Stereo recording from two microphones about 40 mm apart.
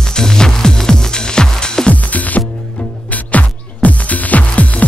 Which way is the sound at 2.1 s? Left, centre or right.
Left.